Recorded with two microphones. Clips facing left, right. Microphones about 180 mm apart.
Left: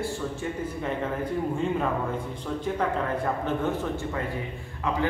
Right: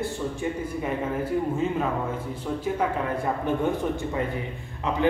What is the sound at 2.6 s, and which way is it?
A man's voice, 10° right (ahead or behind).